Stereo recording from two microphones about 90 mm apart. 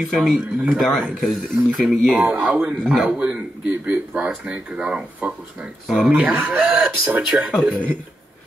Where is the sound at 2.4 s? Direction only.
10° right (ahead or behind).